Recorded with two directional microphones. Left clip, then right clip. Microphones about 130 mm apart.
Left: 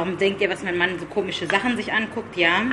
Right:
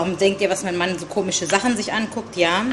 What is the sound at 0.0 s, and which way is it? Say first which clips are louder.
A woman's voice: right 3 dB; 40° right (ahead or behind).